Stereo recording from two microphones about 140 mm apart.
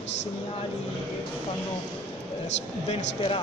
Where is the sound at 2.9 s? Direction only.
45° left (ahead or behind).